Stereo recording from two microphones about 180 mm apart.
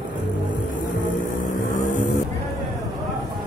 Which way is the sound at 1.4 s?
50° left (ahead or behind).